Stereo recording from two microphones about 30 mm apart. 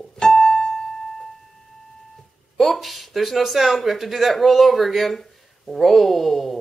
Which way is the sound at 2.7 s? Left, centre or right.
Centre.